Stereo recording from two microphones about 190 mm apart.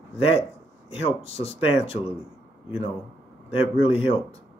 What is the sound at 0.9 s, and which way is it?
Speech, 30° left (ahead or behind).